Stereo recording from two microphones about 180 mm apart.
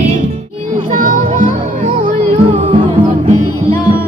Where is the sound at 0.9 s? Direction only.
45° right (ahead or behind).